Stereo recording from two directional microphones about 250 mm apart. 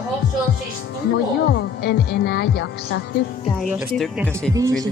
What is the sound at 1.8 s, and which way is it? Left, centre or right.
Speech, left.